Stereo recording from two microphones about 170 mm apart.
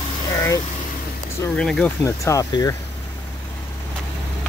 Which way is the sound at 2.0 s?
15° left (ahead or behind).